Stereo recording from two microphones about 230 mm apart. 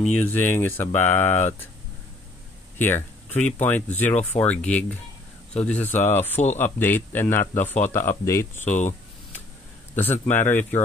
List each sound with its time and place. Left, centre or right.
0.0 s speech: centre
2.8 s speech: centre
8.6 s speech: left
9.9 s speech: centre